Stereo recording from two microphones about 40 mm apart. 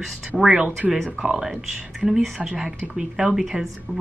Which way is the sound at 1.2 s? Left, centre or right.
Centre.